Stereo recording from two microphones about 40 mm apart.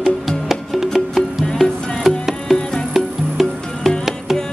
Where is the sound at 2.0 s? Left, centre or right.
Centre.